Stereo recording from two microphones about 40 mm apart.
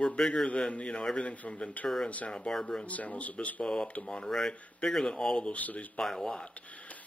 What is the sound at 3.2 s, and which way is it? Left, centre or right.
Speech, left.